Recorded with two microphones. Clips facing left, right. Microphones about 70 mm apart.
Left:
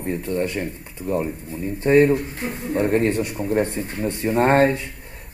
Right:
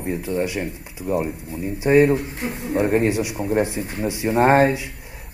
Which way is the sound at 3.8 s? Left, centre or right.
Right.